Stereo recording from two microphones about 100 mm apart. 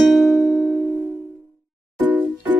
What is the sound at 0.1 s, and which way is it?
Music, centre (ahead or behind).